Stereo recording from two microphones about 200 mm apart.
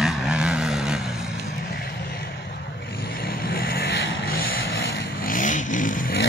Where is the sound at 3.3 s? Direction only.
45° left (ahead or behind).